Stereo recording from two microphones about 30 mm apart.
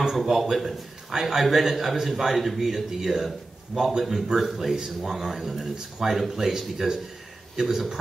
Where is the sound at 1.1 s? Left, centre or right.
Centre.